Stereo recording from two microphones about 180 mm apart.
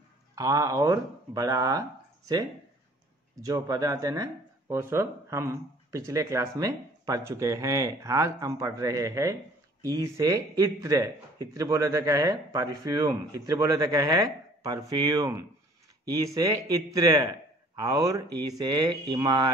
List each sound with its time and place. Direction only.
0.4 s speech: 20° right (ahead or behind)